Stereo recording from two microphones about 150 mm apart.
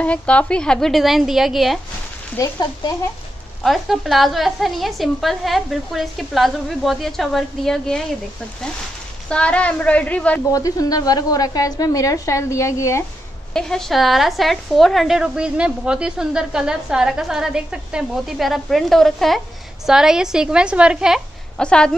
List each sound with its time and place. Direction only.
0.0 s a woman's voice: 10° left (ahead or behind)
2.3 s a woman's voice: 25° left (ahead or behind)
3.6 s a woman's voice: centre (ahead or behind)
9.3 s a woman's voice: 10° left (ahead or behind)
10.5 s a woman's voice: 25° left (ahead or behind)
13.5 s a woman's voice: 5° left (ahead or behind)
21.5 s a woman's voice: 5° left (ahead or behind)